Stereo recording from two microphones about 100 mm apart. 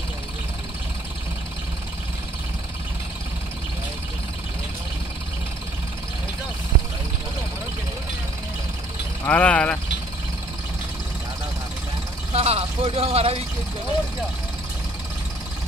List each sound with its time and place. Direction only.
9.3 s speech: 15° left (ahead or behind)
12.3 s a man's voice: 90° right